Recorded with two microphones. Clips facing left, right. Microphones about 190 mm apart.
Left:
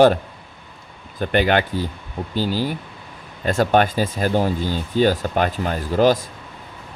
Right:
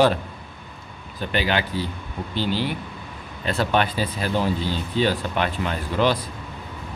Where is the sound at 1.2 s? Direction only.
55° left (ahead or behind).